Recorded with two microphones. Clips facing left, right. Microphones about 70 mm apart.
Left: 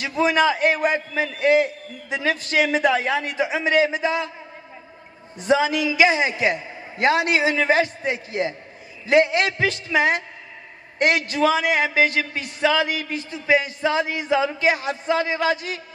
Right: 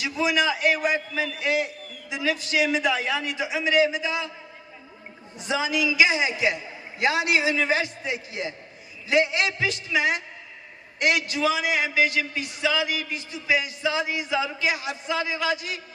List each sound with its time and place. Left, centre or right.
0.0 s a man's voice: left
5.4 s a man's voice: left